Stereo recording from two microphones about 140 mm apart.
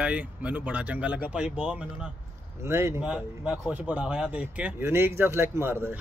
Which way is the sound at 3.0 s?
5° right (ahead or behind).